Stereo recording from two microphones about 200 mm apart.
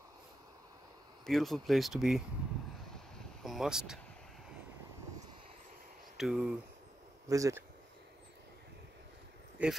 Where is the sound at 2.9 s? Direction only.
Centre (ahead or behind).